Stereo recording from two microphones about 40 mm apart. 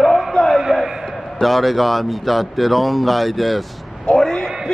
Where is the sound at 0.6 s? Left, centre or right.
Centre.